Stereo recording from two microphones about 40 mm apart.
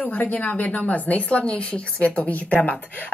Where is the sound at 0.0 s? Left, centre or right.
Left.